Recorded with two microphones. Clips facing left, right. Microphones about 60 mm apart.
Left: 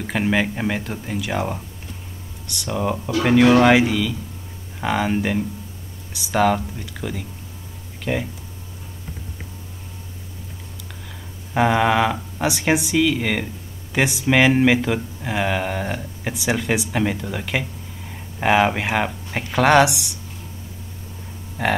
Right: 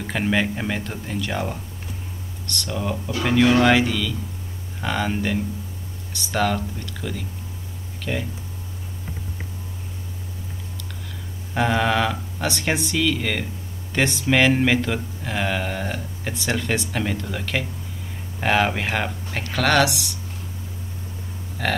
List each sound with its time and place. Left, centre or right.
0.0 s speech: centre
11.5 s speech: centre
21.6 s hum: centre